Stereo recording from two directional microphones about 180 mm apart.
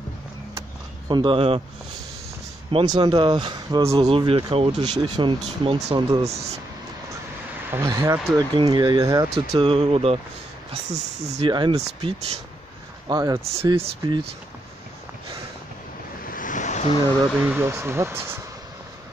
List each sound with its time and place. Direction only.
0.6 s vehicle: 25° right (ahead or behind)
2.7 s speech: 25° right (ahead or behind)
7.7 s speech: 15° right (ahead or behind)
9.5 s speech: 30° right (ahead or behind)
13.1 s speech: 20° right (ahead or behind)
13.4 s speech: 35° right (ahead or behind)
16.3 s vehicle: 45° left (ahead or behind)
17.6 s speech: 15° right (ahead or behind)